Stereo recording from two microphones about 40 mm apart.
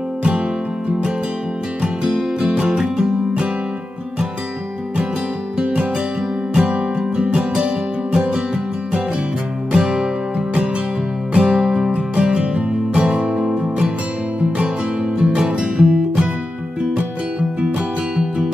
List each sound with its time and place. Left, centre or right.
2.4 s music: right
6.6 s music: right
9.7 s music: centre
11.3 s music: right
11.6 s music: centre
11.9 s music: right
15.1 s music: right
18.1 s music: centre